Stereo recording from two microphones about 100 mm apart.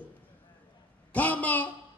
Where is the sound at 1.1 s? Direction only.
15° left (ahead or behind).